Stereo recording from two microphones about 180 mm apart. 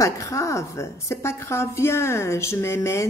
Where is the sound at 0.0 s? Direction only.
15° left (ahead or behind).